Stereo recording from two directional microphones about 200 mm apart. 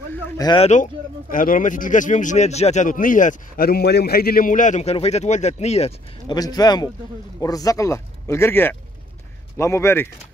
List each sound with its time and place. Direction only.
0.4 s speech: 20° left (ahead or behind)
1.3 s speech: 45° left (ahead or behind)
6.3 s speech: 20° left (ahead or behind)